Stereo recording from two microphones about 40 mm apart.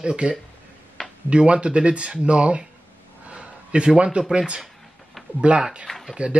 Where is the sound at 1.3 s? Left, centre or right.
Right.